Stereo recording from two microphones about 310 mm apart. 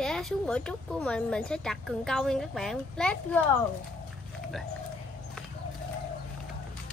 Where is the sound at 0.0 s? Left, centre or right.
Centre.